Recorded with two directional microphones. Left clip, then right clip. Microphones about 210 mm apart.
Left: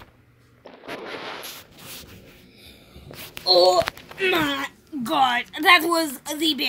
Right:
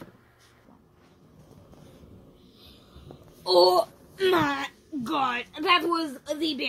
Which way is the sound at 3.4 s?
35° right (ahead or behind).